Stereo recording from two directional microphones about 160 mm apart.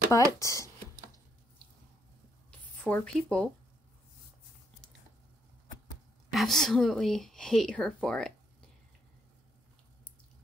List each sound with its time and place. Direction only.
0.1 s speech: 20° left (ahead or behind)
2.8 s speech: 5° left (ahead or behind)
6.3 s speech: centre (ahead or behind)